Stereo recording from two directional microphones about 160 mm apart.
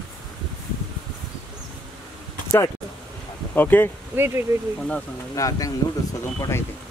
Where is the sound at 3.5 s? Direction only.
10° left (ahead or behind).